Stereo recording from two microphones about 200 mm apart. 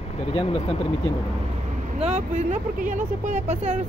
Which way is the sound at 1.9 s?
35° right (ahead or behind).